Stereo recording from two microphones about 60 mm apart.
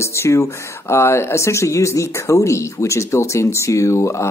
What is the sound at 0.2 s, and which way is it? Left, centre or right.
Speech, left.